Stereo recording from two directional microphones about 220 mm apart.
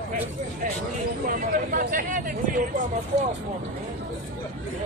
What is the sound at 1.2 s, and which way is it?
Speech, 40° right (ahead or behind).